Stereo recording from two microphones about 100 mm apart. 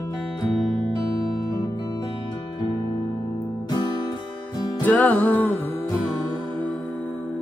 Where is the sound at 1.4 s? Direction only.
40° left (ahead or behind).